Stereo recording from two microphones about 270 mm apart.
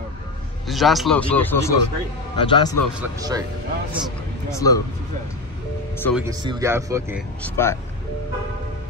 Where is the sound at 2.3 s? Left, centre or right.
Centre.